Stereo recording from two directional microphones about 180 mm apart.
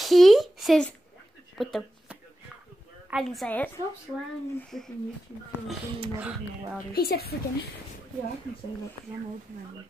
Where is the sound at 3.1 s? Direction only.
Centre (ahead or behind).